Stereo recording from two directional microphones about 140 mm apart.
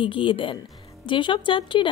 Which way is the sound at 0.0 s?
35° left (ahead or behind).